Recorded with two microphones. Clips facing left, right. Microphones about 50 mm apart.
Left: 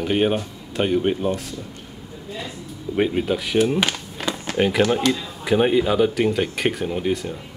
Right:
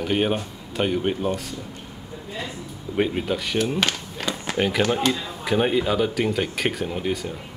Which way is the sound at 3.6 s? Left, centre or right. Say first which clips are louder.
Left 3 dB; centre.